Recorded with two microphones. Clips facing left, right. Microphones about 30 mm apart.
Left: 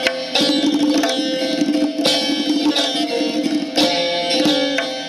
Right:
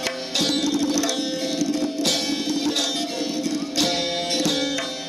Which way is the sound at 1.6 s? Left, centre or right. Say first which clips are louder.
Left 6 dB; left.